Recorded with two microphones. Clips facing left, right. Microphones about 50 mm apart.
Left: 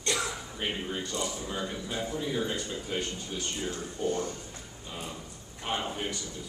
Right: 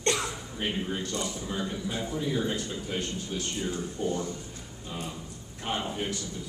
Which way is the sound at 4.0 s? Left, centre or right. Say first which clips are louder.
Left 1 dB; centre.